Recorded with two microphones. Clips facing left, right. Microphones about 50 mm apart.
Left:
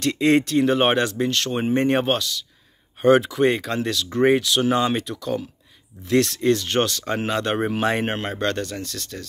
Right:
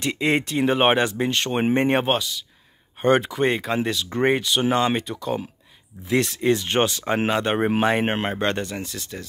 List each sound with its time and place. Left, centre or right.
0.0 s speech: centre
1.6 s speech: right
1.9 s speech: centre